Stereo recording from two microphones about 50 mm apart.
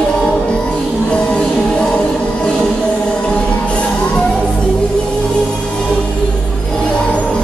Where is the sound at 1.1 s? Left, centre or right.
Centre.